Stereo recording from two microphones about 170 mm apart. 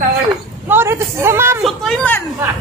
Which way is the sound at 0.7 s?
15° right (ahead or behind).